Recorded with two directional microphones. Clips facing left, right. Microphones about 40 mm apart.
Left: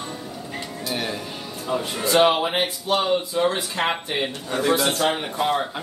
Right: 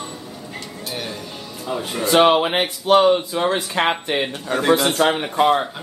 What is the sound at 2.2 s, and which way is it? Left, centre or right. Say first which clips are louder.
Speech: right 4 dB; right.